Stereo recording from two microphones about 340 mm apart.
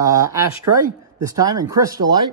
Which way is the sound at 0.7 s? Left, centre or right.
Right.